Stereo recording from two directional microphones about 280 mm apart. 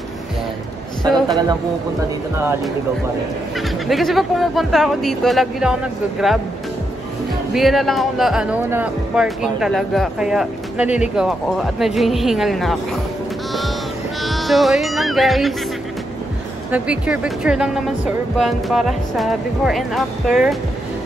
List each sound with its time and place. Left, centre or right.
3.8 s speech: centre
7.5 s speech: centre
14.2 s speech: centre
16.7 s speech: centre